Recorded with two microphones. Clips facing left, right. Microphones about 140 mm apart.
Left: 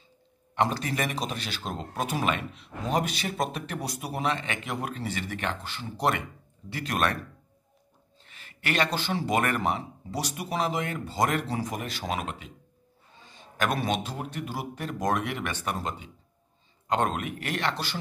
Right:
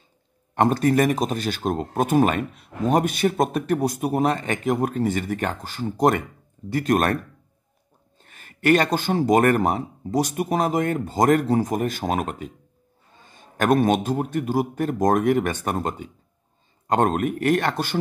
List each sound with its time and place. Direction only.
0.6 s speech: 50° right (ahead or behind)
8.2 s speech: 50° right (ahead or behind)